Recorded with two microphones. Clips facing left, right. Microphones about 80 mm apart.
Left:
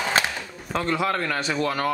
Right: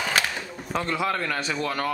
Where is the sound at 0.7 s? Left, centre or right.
Centre.